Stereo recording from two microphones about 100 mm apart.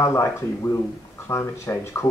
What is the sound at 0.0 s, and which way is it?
Speech, 30° left (ahead or behind).